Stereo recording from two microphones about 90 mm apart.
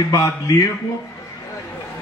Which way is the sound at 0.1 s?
40° left (ahead or behind).